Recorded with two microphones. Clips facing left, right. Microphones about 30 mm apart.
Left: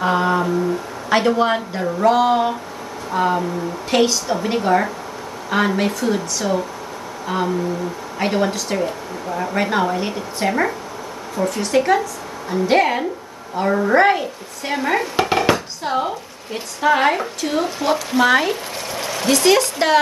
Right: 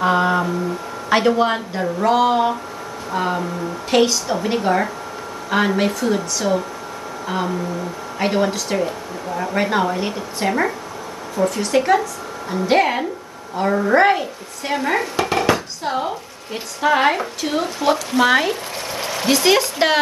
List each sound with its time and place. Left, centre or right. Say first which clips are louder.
0.0 s a sound: right 1 dB; centre
1.1 s a woman's voice: even; centre
15.1 s dishes: left 3 dB; centre
15.5 s speech: left 1 dB; centre